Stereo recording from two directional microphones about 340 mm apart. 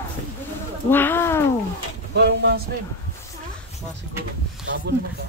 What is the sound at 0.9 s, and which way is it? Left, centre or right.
Bird, centre.